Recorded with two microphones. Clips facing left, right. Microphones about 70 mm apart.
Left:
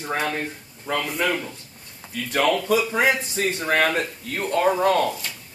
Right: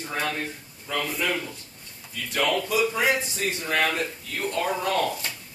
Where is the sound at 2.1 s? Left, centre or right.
Left.